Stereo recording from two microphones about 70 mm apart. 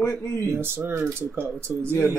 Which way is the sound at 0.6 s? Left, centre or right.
Right.